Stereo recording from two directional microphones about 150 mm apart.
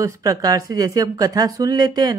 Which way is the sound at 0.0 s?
20° right (ahead or behind).